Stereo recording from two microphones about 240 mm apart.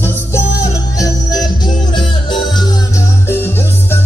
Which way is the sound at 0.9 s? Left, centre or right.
Centre.